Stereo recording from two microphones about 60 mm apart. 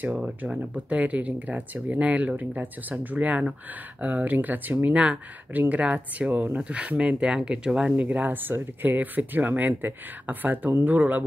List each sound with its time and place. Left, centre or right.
0.5 s speech: right
7.9 s speech: right